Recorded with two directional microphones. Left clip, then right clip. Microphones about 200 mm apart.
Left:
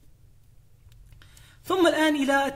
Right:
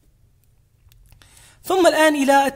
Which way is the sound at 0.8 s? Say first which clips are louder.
Right 4 dB; 45° right (ahead or behind).